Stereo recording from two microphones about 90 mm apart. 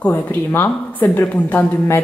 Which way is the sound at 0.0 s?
20° left (ahead or behind).